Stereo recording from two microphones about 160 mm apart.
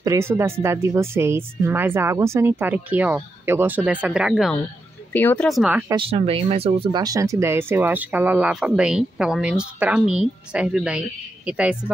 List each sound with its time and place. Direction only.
0.0 s speech: 15° right (ahead or behind)
5.1 s a woman's voice: 10° left (ahead or behind); by 5.9 s 5° right (ahead or behind)
5.9 s speech: 35° right (ahead or behind)
7.0 s speech: 20° right (ahead or behind)